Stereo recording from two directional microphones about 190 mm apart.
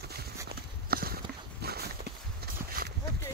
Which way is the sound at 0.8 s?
50° right (ahead or behind).